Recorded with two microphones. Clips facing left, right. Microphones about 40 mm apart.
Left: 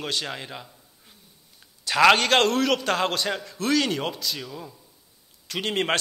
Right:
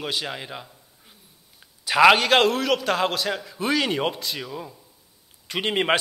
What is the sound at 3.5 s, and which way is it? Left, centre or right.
A man's voice, centre.